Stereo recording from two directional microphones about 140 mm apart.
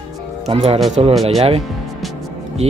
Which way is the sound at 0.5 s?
45° right (ahead or behind).